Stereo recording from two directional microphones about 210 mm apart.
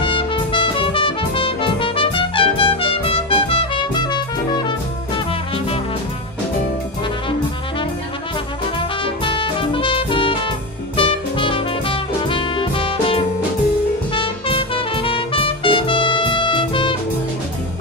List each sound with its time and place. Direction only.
0.0 s music: 25° left (ahead or behind)
9.0 s music: 25° left (ahead or behind)